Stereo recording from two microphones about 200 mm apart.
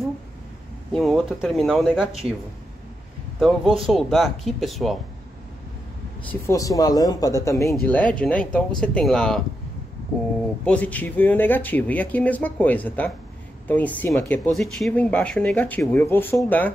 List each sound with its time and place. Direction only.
0.9 s speech: centre (ahead or behind)
3.3 s speech: centre (ahead or behind)
6.4 s speech: 15° left (ahead or behind); by 9.4 s centre (ahead or behind)
10.6 s speech: 5° left (ahead or behind)